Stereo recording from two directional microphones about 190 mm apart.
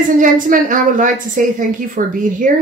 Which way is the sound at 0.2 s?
45° right (ahead or behind).